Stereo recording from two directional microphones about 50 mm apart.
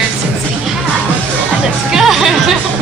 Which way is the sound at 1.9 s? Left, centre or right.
Centre.